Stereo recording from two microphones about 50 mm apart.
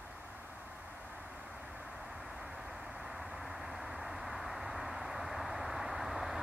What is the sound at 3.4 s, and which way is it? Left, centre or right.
Vehicle, centre.